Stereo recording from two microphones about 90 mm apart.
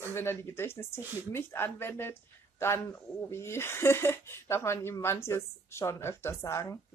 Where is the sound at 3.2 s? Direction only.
30° left (ahead or behind).